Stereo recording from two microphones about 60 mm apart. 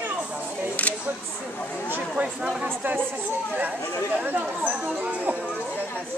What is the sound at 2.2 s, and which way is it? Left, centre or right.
Chatter, centre.